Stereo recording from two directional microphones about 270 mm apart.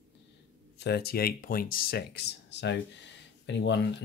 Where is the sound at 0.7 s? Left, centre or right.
Left.